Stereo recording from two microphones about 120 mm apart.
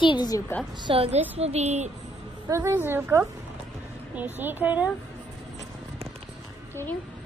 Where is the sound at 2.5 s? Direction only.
20° right (ahead or behind).